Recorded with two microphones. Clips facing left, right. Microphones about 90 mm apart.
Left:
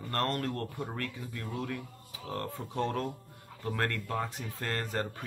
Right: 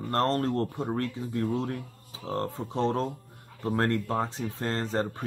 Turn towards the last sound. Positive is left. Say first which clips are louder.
# right 5 dB
turn(degrees=-25)  # may be behind; listen again after turning